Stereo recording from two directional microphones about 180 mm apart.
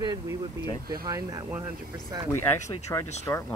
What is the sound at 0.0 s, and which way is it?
Speech, 20° right (ahead or behind).